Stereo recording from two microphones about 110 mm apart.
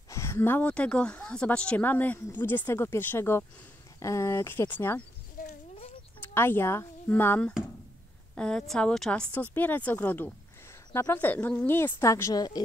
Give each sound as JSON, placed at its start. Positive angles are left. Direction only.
{"t": 0.1, "sound": "speech", "side_deg": 25}
{"t": 6.2, "sound": "speech", "side_deg": 20}
{"t": 8.4, "sound": "speech", "side_deg": 5}
{"t": 10.9, "sound": "speech", "side_deg": 25}
{"t": 11.1, "sound": "speech", "side_deg": 15}